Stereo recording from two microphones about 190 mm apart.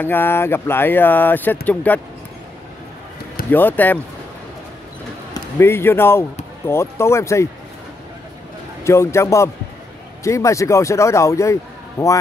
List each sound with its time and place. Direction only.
0.0 s speech: 10° left (ahead or behind)
3.5 s speech: 10° left (ahead or behind)
5.3 s speech: 15° left (ahead or behind)
8.8 s speech: 15° left (ahead or behind)